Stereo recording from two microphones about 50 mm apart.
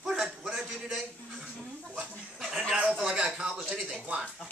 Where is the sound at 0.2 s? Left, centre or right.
Centre.